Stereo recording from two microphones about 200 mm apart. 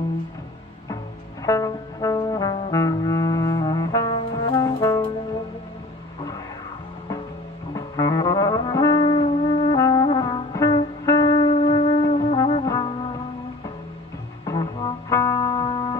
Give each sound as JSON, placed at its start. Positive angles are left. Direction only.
{"t": 1.4, "sound": "trombone", "side_deg": 15}
{"t": 7.7, "sound": "music", "side_deg": 20}
{"t": 14.4, "sound": "music", "side_deg": 20}